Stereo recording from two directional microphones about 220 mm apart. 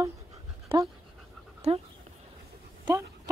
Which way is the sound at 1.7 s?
25° right (ahead or behind).